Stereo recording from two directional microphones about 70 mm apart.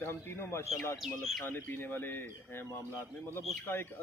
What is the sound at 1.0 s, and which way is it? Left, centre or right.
Speech, centre.